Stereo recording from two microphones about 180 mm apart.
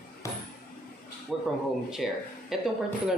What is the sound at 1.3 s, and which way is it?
Speech, centre (ahead or behind).